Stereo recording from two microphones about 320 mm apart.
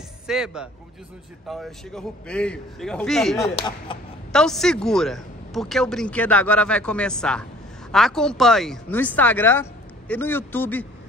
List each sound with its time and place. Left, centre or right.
0.3 s speech: centre
3.5 s speech: centre
4.3 s speech: centre